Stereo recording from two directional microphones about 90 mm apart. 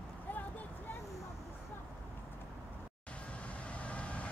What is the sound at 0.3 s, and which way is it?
Vehicle, 20° left (ahead or behind).